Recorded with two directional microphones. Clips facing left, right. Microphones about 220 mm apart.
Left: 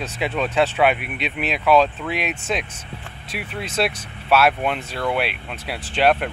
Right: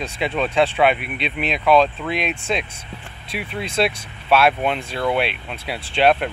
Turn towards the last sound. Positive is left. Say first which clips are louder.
# right 1 dB
turn(degrees=5)  # may be behind; listen again after turning